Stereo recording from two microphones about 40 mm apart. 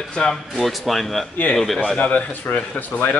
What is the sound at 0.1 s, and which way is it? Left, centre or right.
Speech, centre.